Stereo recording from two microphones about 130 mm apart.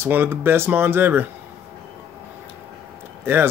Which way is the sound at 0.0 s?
15° right (ahead or behind).